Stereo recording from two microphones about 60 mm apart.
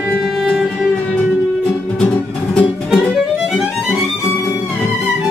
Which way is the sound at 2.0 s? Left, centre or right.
Left.